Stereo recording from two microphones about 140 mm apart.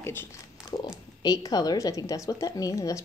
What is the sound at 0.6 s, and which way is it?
A woman's voice, 35° left (ahead or behind).